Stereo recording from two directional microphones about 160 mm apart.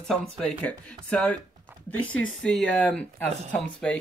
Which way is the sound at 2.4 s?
5° left (ahead or behind).